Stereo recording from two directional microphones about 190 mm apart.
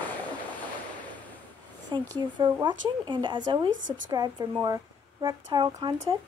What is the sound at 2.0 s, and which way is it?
Speech, 25° right (ahead or behind).